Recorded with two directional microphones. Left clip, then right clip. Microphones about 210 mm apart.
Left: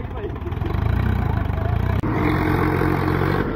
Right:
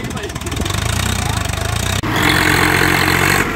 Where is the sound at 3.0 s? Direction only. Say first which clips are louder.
Right 9 dB; 35° right (ahead or behind).